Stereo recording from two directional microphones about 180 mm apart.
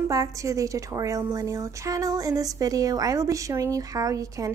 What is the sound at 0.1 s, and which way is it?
A woman's voice, 20° right (ahead or behind).